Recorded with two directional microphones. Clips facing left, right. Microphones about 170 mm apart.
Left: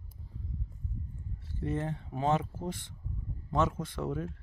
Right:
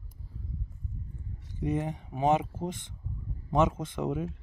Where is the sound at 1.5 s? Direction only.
15° right (ahead or behind).